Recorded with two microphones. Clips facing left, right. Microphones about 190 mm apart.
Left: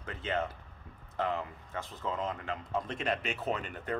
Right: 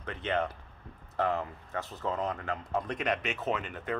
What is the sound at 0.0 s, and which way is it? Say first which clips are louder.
Speech: right 3 dB; 25° right (ahead or behind).